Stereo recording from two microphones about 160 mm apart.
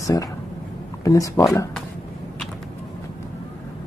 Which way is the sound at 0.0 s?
20° left (ahead or behind).